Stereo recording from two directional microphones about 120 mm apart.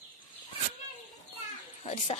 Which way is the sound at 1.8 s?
65° left (ahead or behind).